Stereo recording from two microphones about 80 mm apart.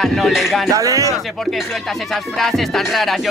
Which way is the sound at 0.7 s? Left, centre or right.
Right.